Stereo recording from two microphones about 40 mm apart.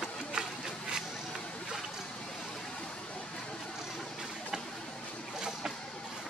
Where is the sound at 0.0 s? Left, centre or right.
Centre.